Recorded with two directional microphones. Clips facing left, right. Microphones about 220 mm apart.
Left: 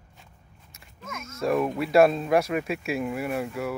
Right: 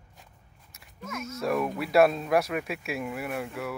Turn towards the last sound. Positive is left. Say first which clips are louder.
# left 4 dB
turn(degrees=0)  # may be behind; listen again after turning